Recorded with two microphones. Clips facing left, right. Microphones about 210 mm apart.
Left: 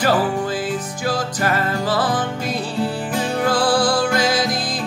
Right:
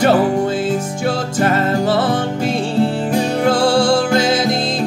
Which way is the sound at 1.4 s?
25° right (ahead or behind).